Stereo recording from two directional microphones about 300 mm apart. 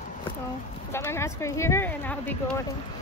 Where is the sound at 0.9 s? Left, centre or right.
Centre.